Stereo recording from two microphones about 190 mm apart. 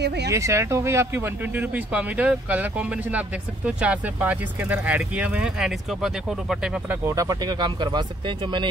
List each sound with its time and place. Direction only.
0.0 s speech: 60° right (ahead or behind)
0.3 s speech: 15° right (ahead or behind)
7.1 s speech: 20° right (ahead or behind)